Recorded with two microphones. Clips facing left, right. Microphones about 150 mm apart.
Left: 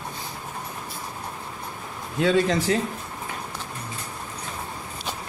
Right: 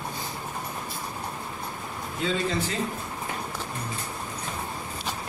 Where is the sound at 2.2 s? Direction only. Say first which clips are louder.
Left 7 dB; 70° left (ahead or behind).